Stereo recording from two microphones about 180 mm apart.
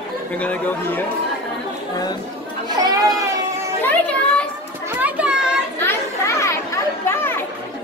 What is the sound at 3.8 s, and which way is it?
Children playing, 10° left (ahead or behind).